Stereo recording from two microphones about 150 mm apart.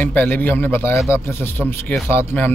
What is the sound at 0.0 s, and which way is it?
Speech, 10° left (ahead or behind).